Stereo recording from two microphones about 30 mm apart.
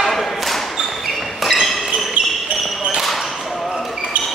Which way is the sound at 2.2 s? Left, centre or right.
Right.